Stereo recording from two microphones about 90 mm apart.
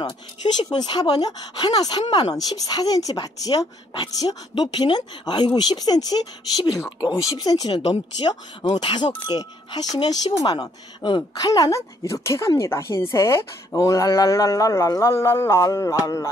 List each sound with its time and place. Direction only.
0.6 s speech: 50° left (ahead or behind)
4.6 s speech: 60° left (ahead or behind)
7.7 s speech: 75° left (ahead or behind)
8.7 s speech: 55° left (ahead or behind)
11.3 s speech: 40° left (ahead or behind)